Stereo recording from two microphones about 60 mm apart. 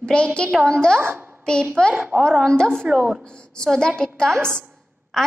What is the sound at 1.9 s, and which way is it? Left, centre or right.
Speech, right.